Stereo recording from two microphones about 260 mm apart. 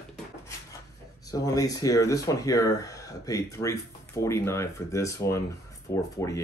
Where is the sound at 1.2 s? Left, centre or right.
Centre.